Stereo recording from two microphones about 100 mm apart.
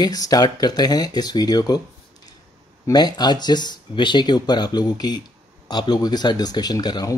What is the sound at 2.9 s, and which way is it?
Speech, 45° left (ahead or behind).